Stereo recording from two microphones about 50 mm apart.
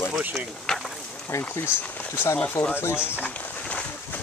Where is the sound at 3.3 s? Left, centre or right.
Left.